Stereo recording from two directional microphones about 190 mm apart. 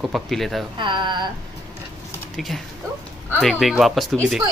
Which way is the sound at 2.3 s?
Centre (ahead or behind).